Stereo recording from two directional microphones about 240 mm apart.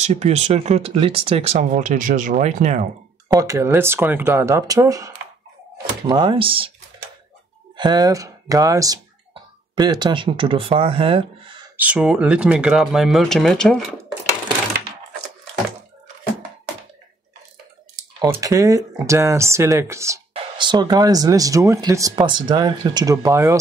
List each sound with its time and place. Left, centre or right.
0.0 s speech: right
3.3 s speech: centre
7.7 s speech: centre
11.7 s speech: centre
18.2 s speech: centre